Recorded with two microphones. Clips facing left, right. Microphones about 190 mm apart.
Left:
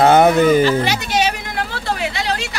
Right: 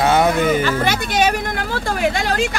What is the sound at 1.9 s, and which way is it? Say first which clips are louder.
Vehicle: right 3 dB; 50° right (ahead or behind).